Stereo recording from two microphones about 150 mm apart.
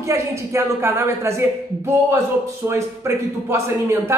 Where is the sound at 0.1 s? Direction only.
20° right (ahead or behind).